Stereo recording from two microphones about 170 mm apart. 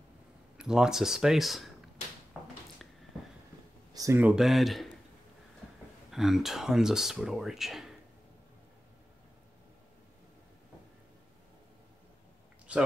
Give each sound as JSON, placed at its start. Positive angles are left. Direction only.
{"t": 0.6, "sound": "speech", "side_deg": -5}
{"t": 2.3, "sound": "a sound", "side_deg": -5}
{"t": 3.9, "sound": "a sound", "side_deg": -20}
{"t": 4.2, "sound": "speech", "side_deg": -5}
{"t": 6.1, "sound": "speech", "side_deg": 0}
{"t": 12.7, "sound": "speech", "side_deg": -5}